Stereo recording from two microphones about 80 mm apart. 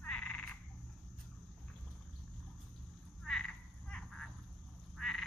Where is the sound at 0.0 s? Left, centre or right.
Centre.